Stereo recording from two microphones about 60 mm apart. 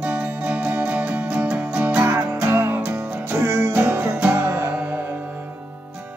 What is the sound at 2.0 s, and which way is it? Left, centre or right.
Music, right.